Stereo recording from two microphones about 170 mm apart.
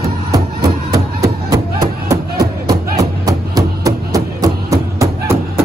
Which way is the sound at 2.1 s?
20° right (ahead or behind).